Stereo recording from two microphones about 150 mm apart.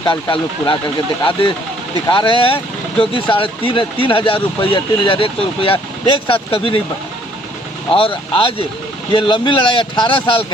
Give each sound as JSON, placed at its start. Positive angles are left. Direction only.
{"t": 0.1, "sound": "speech", "side_deg": 35}
{"t": 2.0, "sound": "speech", "side_deg": 35}
{"t": 7.9, "sound": "speech", "side_deg": 35}